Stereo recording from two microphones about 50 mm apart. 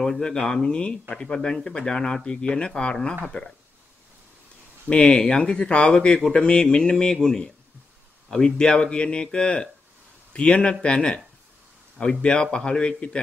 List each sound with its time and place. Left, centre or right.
0.0 s speech: centre
5.1 s speech: centre